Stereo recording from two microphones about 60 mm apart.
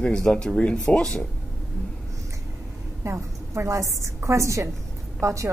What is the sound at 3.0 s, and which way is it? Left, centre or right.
A woman's voice, right.